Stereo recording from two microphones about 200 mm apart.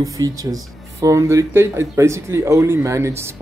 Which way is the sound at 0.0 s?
15° right (ahead or behind).